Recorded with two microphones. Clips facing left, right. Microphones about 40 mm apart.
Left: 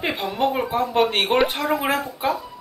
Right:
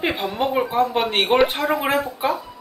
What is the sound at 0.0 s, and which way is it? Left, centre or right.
Speech, centre.